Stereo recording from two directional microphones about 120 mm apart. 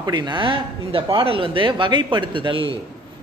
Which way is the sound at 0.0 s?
35° right (ahead or behind).